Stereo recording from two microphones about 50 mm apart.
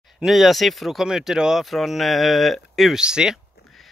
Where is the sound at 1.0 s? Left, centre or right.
Centre.